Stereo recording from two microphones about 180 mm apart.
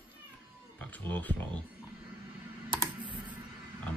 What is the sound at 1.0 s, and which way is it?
Speech, 10° left (ahead or behind).